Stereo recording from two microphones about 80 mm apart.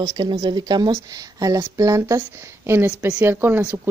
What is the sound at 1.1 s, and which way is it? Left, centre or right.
Speech, right.